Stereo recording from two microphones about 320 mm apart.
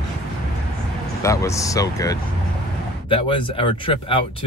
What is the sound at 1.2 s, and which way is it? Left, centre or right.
Speech, centre.